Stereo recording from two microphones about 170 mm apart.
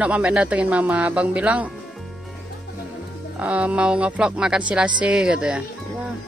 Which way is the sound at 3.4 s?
5° right (ahead or behind).